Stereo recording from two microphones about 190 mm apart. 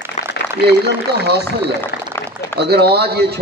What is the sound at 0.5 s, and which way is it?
Speech, 60° right (ahead or behind).